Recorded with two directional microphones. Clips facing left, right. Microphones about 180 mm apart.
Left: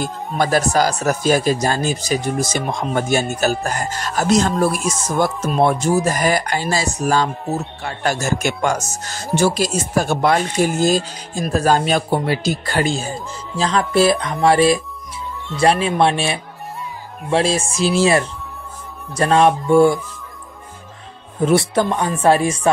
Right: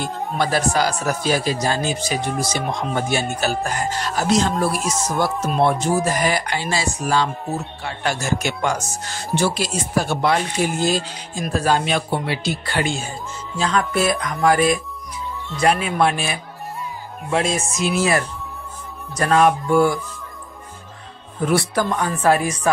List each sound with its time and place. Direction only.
0.0 s speech: 45° left (ahead or behind); by 20.0 s 25° left (ahead or behind)
21.5 s speech: 25° left (ahead or behind)